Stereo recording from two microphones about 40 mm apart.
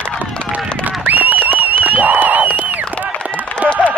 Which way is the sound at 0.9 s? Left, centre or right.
Right.